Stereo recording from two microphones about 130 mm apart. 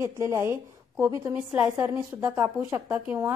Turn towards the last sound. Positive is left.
turn(degrees=-15)  # may be behind; listen again after turning